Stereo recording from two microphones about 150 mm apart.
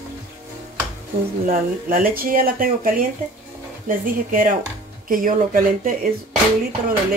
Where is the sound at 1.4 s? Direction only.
70° right (ahead or behind).